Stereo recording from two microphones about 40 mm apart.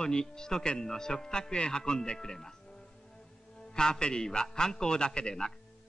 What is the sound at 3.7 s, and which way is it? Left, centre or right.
A man's voice, centre.